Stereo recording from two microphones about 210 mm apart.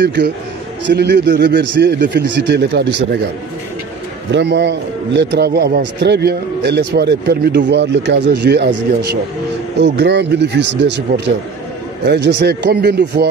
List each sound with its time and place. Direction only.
0.0 s a man's voice: 55° right (ahead or behind)
4.3 s a man's voice: 55° right (ahead or behind)